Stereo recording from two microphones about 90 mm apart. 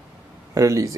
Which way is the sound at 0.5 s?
35° right (ahead or behind).